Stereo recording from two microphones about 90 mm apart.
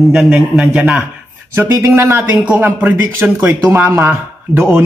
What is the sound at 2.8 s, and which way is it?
Speech, 20° right (ahead or behind).